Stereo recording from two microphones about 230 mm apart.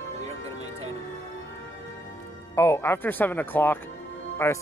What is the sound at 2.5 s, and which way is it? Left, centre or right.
Speech, centre.